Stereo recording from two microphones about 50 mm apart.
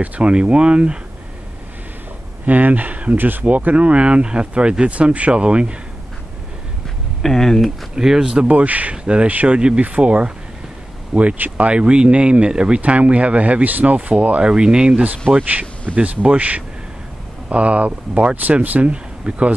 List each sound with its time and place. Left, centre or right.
0.0 s speech: right
2.4 s speech: right
7.2 s speech: centre
7.9 s speech: centre
8.5 s speech: right
15.0 s speech: right